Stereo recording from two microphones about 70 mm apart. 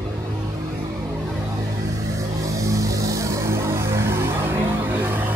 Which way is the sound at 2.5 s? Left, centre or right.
Right.